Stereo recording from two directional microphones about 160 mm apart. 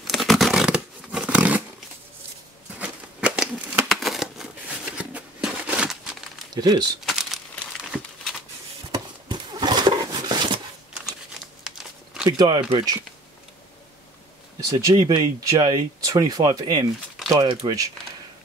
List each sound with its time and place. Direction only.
0.0 s a sound: centre (ahead or behind)
2.8 s crumpling: 5° right (ahead or behind)
4.9 s a sound: 5° right (ahead or behind)
6.5 s speech: 25° right (ahead or behind)
7.1 s crumpling: centre (ahead or behind)
8.9 s horse: 25° right (ahead or behind)
11.6 s crumpling: 5° right (ahead or behind)
12.3 s speech: 25° right (ahead or behind)
15.0 s speech: 25° right (ahead or behind)